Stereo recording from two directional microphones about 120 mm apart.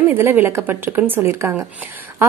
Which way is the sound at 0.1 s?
20° right (ahead or behind).